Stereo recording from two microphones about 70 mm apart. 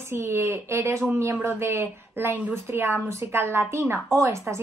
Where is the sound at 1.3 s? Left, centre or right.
Right.